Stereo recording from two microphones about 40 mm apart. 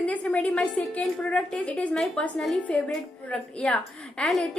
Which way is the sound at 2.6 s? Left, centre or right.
Left.